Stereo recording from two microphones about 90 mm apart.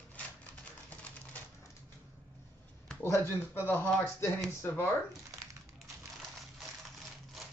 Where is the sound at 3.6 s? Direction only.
25° left (ahead or behind).